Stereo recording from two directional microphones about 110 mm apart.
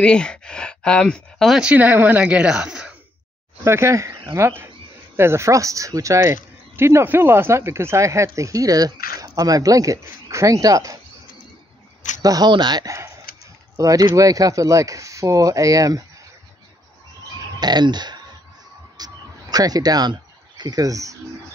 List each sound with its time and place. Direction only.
0.0 s speech: 10° left (ahead or behind)
1.5 s a woman's voice: 10° right (ahead or behind)
3.6 s speech: 25° right (ahead or behind)
12.2 s speech: 35° right (ahead or behind)
17.6 s speech: 40° right (ahead or behind)
18.9 s a sound: 35° right (ahead or behind)